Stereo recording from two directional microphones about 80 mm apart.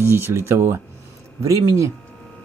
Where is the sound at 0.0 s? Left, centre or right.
Right.